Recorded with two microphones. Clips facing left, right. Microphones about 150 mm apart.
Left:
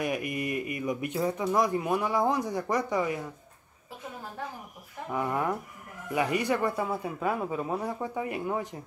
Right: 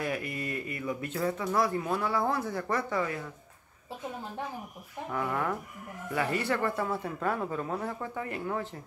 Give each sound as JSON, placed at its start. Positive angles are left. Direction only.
{"t": 0.0, "sound": "speech", "side_deg": 15}
{"t": 5.1, "sound": "speech", "side_deg": 15}